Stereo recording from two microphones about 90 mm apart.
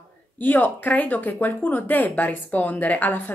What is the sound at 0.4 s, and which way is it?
Speech, 20° left (ahead or behind).